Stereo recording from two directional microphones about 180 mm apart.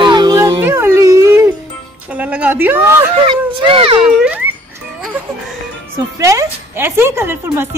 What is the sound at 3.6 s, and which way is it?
Speech, 30° right (ahead or behind).